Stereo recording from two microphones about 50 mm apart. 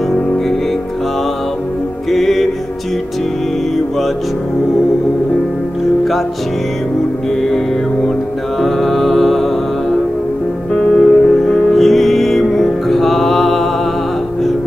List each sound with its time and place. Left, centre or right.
2.0 s music: centre
7.4 s music: centre
10.7 s music: centre
11.7 s music: centre